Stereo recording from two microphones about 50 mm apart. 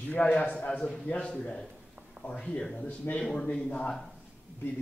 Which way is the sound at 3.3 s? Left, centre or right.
Centre.